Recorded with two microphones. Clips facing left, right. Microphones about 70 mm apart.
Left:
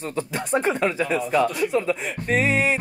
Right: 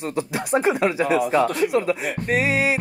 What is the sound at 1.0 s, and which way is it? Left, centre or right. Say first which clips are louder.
Speech: right 5 dB; right.